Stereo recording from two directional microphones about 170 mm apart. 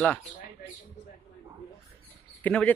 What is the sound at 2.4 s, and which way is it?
Speech, 10° left (ahead or behind).